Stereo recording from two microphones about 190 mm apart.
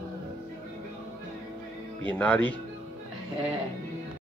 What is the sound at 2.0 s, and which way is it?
Speech, 10° left (ahead or behind).